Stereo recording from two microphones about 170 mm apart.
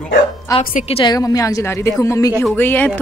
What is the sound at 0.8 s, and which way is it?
Speech, 35° left (ahead or behind).